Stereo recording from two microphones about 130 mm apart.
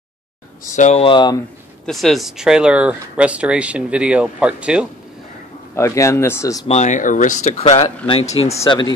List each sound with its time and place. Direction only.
0.7 s speech: 65° left (ahead or behind)
1.0 s speech: 40° left (ahead or behind)
1.9 s speech: centre (ahead or behind)
5.8 s speech: 20° left (ahead or behind)
6.7 s speech: 70° left (ahead or behind)
8.1 s speech: 50° left (ahead or behind)
8.6 s speech: 35° left (ahead or behind)